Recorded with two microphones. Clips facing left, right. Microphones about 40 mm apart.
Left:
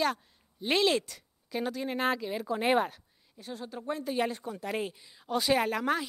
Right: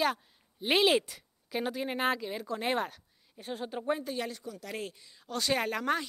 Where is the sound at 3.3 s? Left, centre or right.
Right.